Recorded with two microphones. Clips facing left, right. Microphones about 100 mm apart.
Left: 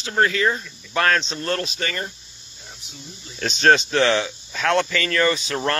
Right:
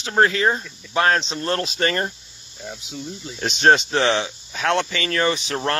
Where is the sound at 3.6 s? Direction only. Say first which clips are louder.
Even; 25° right (ahead or behind).